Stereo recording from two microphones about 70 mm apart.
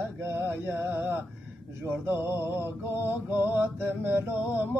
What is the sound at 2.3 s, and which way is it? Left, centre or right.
Mantra, left.